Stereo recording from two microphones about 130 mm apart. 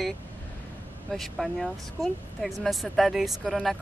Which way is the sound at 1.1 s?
Centre (ahead or behind).